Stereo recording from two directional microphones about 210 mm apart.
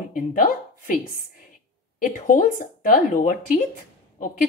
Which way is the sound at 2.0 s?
40° left (ahead or behind).